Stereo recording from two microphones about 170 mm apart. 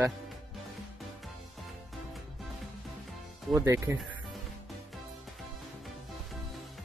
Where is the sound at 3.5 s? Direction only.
15° right (ahead or behind).